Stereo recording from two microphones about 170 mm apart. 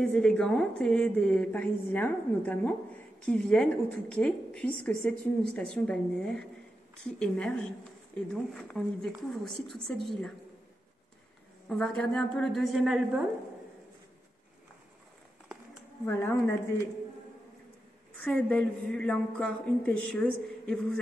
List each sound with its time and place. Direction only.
0.0 s a woman's voice: 5° left (ahead or behind)
11.7 s a woman's voice: 5° left (ahead or behind)
16.1 s a man's voice: 15° left (ahead or behind)
18.1 s a man's voice: 5° left (ahead or behind)